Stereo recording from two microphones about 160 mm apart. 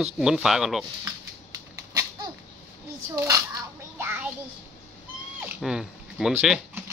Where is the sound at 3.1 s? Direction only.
20° right (ahead or behind).